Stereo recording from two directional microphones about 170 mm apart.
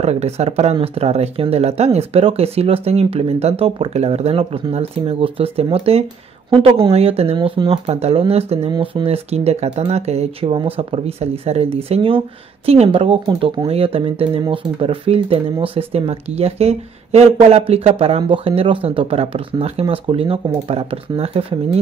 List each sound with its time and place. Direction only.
0.0 s speech: 40° right (ahead or behind)